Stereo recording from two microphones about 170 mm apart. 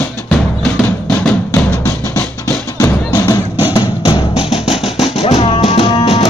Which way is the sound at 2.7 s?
25° left (ahead or behind).